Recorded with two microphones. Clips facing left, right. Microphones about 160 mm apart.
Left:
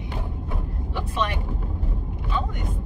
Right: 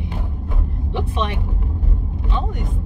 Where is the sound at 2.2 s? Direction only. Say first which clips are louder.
Right 2 dB; 25° right (ahead or behind).